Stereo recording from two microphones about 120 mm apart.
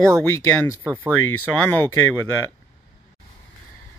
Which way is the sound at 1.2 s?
15° left (ahead or behind).